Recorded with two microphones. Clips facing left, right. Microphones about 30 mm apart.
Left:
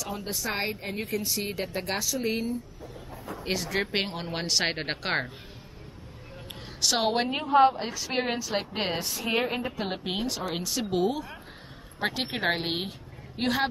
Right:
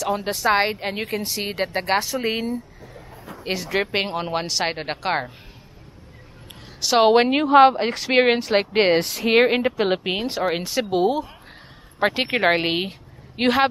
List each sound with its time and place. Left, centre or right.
0.0 s a woman's voice: right
1.4 s speech: right
3.6 s a woman's voice: right; by 5.3 s centre
7.0 s speech: right
7.2 s speech: right
9.8 s speech: right
10.0 s a woman's voice: right
13.4 s speech: right